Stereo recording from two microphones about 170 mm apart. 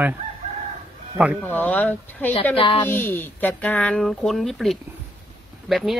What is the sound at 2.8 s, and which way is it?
A woman's voice, 15° left (ahead or behind).